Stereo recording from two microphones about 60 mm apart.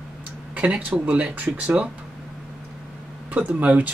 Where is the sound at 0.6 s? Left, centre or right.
Right.